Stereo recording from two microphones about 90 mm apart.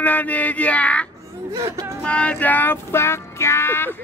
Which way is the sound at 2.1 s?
15° left (ahead or behind).